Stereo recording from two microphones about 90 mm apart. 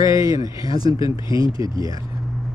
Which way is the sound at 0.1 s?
40° right (ahead or behind).